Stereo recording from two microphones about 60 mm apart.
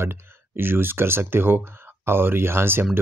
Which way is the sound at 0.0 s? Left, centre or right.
Right.